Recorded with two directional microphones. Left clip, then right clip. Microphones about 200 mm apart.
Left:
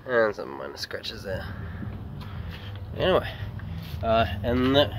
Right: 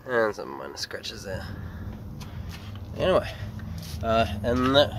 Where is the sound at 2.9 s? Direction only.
10° right (ahead or behind).